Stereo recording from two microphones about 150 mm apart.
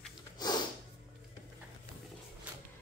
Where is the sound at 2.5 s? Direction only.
10° right (ahead or behind).